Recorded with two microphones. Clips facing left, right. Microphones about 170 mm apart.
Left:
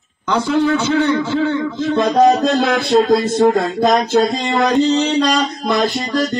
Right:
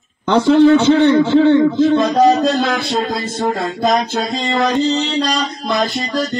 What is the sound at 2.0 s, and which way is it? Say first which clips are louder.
Speech: even; centre (ahead or behind).